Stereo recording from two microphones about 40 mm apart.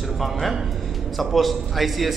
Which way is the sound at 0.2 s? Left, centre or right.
Centre.